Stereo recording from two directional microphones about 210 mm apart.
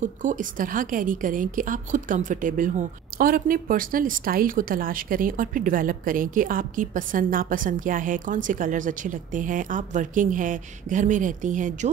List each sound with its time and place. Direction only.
0.0 s a woman's voice: 35° right (ahead or behind)